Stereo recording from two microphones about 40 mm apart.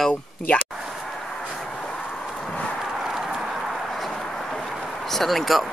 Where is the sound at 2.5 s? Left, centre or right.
Left.